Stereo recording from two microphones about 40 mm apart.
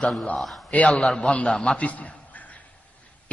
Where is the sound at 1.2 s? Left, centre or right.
Left.